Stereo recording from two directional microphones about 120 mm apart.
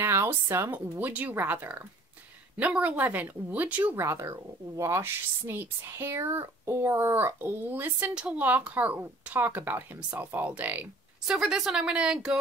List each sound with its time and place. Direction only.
0.0 s speech: 20° right (ahead or behind)